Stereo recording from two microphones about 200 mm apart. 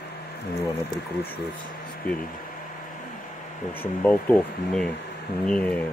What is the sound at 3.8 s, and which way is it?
Speech, 10° left (ahead or behind).